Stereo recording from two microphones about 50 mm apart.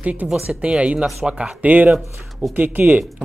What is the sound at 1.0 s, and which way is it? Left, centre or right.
Speech, centre.